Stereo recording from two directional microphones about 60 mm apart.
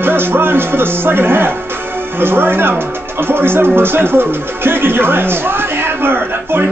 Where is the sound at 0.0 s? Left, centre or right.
Right.